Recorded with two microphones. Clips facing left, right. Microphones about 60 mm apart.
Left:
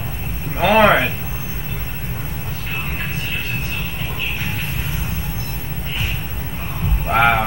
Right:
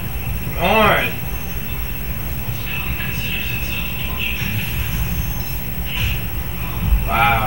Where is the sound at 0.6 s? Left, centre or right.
Centre.